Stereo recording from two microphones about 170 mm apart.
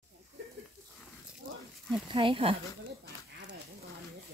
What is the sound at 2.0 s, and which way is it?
Speech, 30° right (ahead or behind).